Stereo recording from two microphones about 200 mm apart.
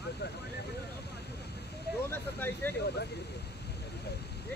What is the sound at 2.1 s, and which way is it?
Vehicle, 10° left (ahead or behind).